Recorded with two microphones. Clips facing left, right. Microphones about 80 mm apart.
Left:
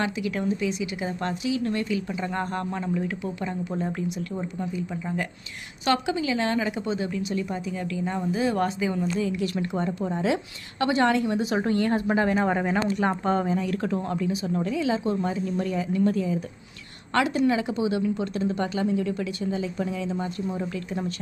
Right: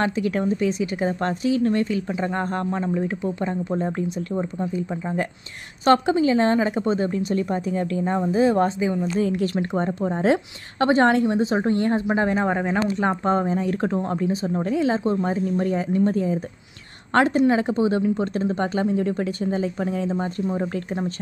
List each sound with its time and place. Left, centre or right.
0.0 s speech: right
9.2 s speech: right
12.4 s speech: centre
13.2 s speech: right